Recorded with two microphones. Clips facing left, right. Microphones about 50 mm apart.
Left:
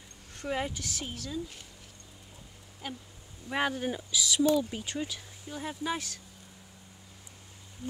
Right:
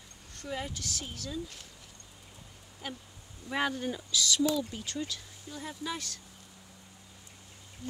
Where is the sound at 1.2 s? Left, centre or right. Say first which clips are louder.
Even; centre.